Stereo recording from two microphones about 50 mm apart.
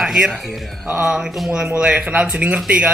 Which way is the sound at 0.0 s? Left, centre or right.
Centre.